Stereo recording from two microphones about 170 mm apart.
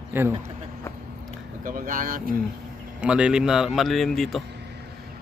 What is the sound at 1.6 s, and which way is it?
Speech, 55° right (ahead or behind).